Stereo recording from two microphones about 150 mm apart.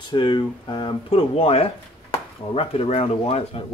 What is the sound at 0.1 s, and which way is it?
Speech, 30° left (ahead or behind).